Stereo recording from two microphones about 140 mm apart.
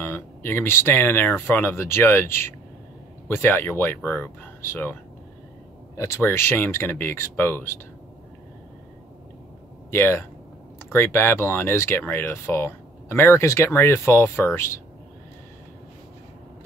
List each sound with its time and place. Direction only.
0.0 s speech: 15° left (ahead or behind)
5.9 s speech: 20° left (ahead or behind)
9.8 s speech: 15° left (ahead or behind)